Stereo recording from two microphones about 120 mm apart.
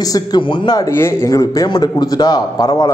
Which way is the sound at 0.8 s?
20° left (ahead or behind).